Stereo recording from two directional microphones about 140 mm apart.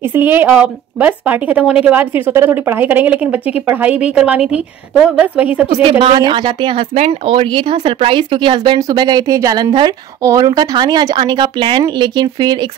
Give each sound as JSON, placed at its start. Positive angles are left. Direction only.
{"t": 0.1, "sound": "a woman's voice", "side_deg": -15}
{"t": 5.9, "sound": "speech", "side_deg": -40}